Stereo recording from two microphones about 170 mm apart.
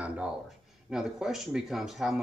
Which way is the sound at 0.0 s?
5° right (ahead or behind).